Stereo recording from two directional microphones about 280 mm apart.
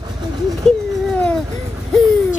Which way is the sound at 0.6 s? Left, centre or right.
Centre.